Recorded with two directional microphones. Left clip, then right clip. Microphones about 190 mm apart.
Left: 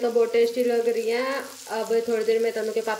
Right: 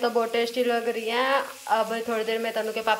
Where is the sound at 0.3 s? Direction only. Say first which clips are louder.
Left 3 dB; 5° left (ahead or behind).